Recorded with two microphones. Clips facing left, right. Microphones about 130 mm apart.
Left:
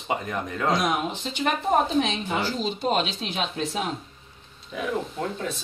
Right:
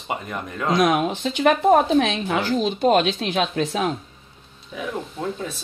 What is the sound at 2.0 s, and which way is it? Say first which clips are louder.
Speech: right 4 dB; 70° right (ahead or behind).